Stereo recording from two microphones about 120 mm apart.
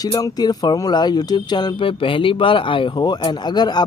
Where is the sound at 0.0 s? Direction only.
30° left (ahead or behind).